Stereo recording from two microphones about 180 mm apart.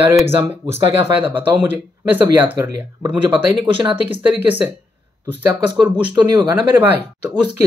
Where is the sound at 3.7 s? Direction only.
30° right (ahead or behind).